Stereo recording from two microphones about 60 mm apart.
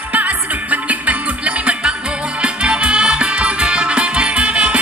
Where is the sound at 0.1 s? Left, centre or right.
Right.